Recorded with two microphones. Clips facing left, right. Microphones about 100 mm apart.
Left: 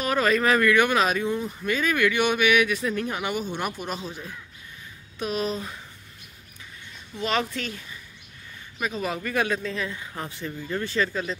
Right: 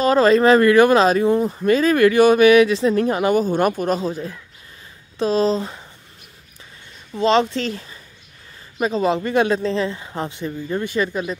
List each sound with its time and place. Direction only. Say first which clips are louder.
0.0 s speech: right 9 dB; 30° right (ahead or behind)
5.2 s speech: right 10 dB; 30° right (ahead or behind)
7.2 s speech: right 10 dB; 25° right (ahead or behind)